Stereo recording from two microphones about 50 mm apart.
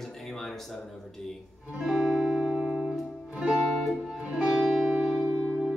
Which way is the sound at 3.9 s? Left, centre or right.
Centre.